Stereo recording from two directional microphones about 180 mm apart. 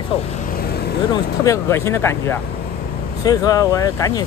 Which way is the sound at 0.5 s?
60° left (ahead or behind).